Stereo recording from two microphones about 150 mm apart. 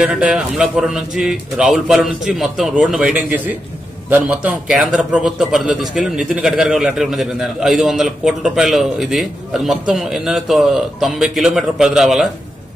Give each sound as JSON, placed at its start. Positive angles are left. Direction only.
{"t": 0.0, "sound": "a man's voice", "side_deg": -5}